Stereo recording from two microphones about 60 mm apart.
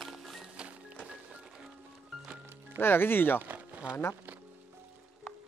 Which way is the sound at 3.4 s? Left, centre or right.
Right.